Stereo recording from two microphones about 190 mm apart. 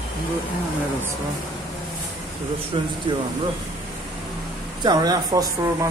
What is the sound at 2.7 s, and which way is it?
Speech, 25° right (ahead or behind).